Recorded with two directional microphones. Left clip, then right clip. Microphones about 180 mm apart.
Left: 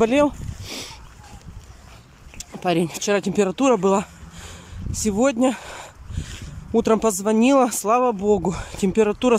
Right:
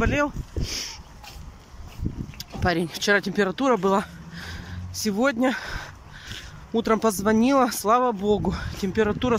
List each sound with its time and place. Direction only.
0.0 s speech: 25° left (ahead or behind)
2.3 s speech: 15° left (ahead or behind)
5.0 s a sound: 15° left (ahead or behind)
6.7 s speech: 15° left (ahead or behind)